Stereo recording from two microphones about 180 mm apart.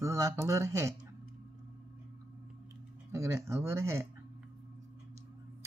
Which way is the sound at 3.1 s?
15° right (ahead or behind).